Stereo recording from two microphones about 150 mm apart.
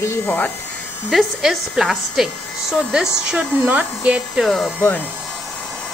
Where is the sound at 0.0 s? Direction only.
15° left (ahead or behind).